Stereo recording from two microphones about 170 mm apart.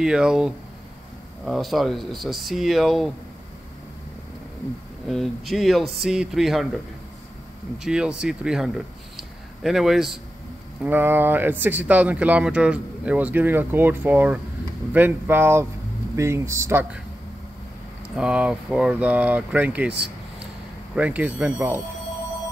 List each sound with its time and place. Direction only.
0.0 s speech: 5° right (ahead or behind)
5.0 s speech: centre (ahead or behind)
7.8 s speech: 5° right (ahead or behind)
18.1 s speech: 5° right (ahead or behind)
20.9 s speech: 10° right (ahead or behind)